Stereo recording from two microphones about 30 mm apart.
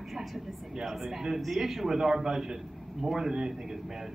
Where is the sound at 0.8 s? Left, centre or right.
Centre.